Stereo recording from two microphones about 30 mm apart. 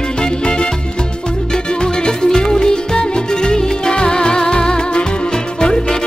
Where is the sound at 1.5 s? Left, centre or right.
Left.